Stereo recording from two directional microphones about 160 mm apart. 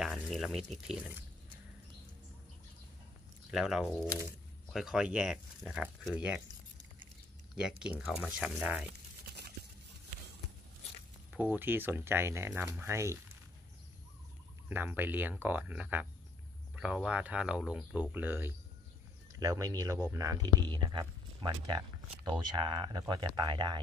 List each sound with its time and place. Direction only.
0.0 s a sound: centre (ahead or behind)
3.5 s speech: 5° right (ahead or behind)
7.8 s speech: 5° right (ahead or behind)
11.5 s speech: 15° right (ahead or behind)
14.7 s speech: 10° right (ahead or behind); by 23.8 s 30° right (ahead or behind)